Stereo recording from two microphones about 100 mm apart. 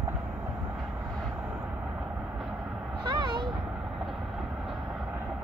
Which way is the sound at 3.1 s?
50° right (ahead or behind).